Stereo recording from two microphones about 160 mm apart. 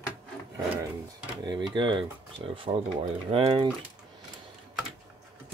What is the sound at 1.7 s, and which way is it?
Speech, 30° right (ahead or behind).